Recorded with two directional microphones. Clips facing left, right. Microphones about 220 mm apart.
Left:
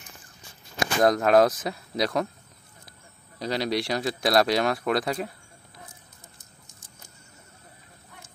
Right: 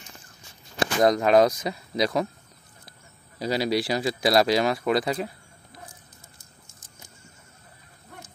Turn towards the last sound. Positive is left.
turn(degrees=20)  # may be behind; listen again after turning